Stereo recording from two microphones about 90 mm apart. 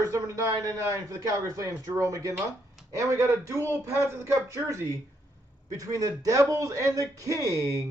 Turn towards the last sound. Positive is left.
turn(degrees=-40)  # may be behind; listen again after turning